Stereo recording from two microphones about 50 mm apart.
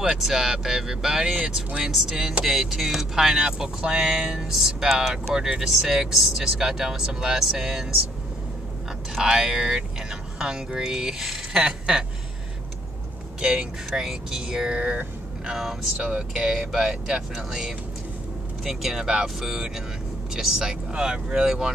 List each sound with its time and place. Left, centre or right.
0.1 s speech: centre
9.2 s speech: centre
13.4 s speech: right
13.9 s speech: centre